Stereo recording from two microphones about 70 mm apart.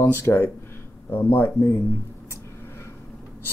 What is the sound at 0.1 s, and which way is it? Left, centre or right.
Speech, left.